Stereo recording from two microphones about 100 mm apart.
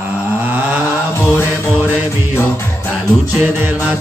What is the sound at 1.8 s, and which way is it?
Music, 20° right (ahead or behind).